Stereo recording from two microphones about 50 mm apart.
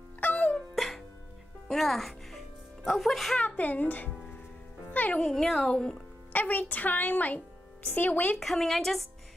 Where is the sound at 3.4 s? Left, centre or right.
Left.